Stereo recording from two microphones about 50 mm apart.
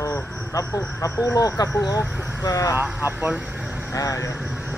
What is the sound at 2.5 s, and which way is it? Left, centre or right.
Speech, left.